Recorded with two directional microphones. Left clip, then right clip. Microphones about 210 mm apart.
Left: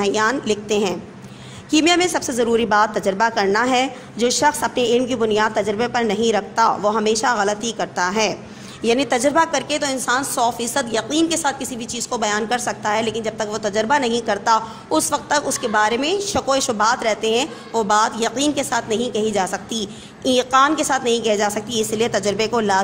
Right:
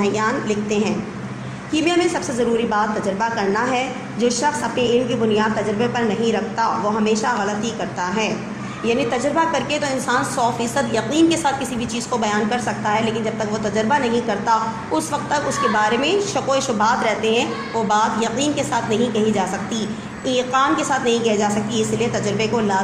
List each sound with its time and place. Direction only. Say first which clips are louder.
0.0 s a woman's voice: left 1 dB; 50° left (ahead or behind)